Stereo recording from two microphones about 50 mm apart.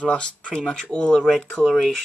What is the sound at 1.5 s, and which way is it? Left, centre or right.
Speech, centre.